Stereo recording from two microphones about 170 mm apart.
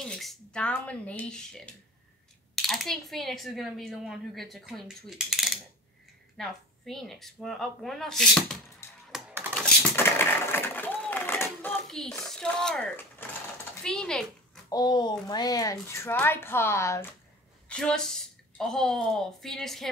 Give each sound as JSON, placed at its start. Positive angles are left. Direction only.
{"t": 0.0, "sound": "speech", "side_deg": 0}
{"t": 8.8, "sound": "music", "side_deg": 15}
{"t": 9.5, "sound": "a sound", "side_deg": 10}
{"t": 13.8, "sound": "a child's voice", "side_deg": 5}
{"t": 14.7, "sound": "a child's voice", "side_deg": 25}
{"t": 17.6, "sound": "speech", "side_deg": 5}